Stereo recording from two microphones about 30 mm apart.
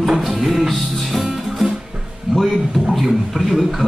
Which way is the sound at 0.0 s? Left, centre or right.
Centre.